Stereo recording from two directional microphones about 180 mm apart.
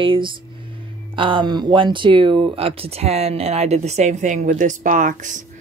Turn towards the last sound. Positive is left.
turn(degrees=-45)  # may be behind; listen again after turning